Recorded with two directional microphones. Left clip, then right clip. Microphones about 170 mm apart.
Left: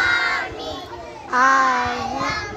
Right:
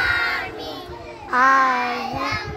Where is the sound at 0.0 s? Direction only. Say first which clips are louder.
Left 2 dB; 15° right (ahead or behind).